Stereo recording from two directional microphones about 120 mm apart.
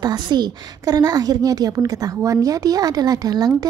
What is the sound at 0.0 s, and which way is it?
A woman's voice, 35° right (ahead or behind).